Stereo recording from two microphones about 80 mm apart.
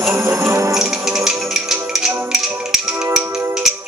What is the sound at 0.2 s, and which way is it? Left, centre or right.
Music, right.